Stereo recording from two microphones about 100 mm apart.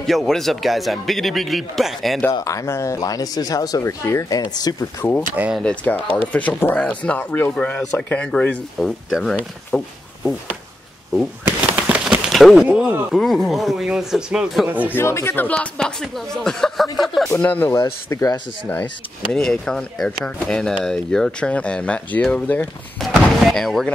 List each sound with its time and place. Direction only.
0.0 s a man's voice: centre (ahead or behind)
2.4 s speech: 30° left (ahead or behind)
4.1 s speech: 30° left (ahead or behind)
4.4 s speech: 40° left (ahead or behind)
5.3 s speech: 15° right (ahead or behind)
5.6 s speech: 10° left (ahead or behind)
11.4 s bird: 15° right (ahead or behind)
12.0 s a sound: 5° right (ahead or behind)
12.6 s a man's voice: 15° right (ahead or behind)
14.7 s speech: 15° right (ahead or behind)
15.0 s a man's voice: 25° left (ahead or behind); by 17.3 s centre (ahead or behind)
17.4 s speech: 20° left (ahead or behind)
19.3 s speech: 5° left (ahead or behind)
22.9 s speech: centre (ahead or behind)